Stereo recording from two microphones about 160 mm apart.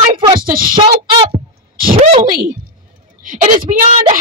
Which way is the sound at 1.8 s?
55° right (ahead or behind).